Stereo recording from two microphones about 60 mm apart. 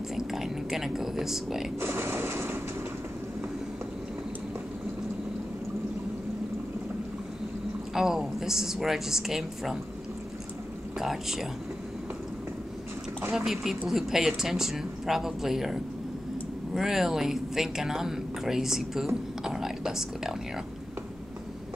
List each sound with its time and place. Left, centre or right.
0.1 s a woman's voice: centre
1.8 s a sound: right
7.9 s a woman's voice: centre
11.0 s a woman's voice: centre
13.3 s a woman's voice: centre